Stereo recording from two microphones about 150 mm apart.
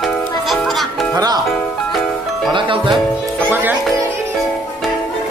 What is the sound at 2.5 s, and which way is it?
Speech, 35° right (ahead or behind).